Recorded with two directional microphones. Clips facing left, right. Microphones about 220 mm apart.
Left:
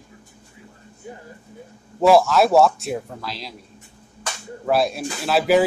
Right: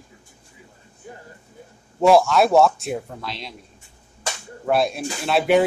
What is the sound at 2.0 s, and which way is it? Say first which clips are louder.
Speech: even; centre (ahead or behind).